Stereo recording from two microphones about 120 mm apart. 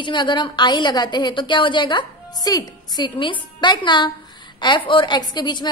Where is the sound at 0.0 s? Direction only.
40° left (ahead or behind).